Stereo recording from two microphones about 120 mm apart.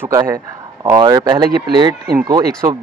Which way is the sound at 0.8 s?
35° right (ahead or behind).